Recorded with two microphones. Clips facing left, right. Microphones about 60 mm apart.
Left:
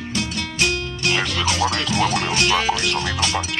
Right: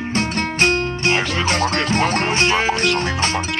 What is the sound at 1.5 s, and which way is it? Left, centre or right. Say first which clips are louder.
Music: right 4 dB; right.